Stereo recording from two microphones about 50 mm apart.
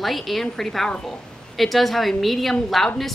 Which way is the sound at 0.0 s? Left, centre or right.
Centre.